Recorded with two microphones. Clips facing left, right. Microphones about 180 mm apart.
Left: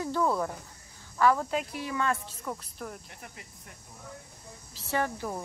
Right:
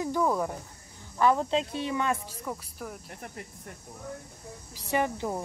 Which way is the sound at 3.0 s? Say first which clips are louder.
Right 6 dB; 45° right (ahead or behind).